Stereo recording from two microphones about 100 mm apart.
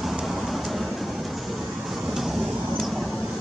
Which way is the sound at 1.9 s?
5° right (ahead or behind).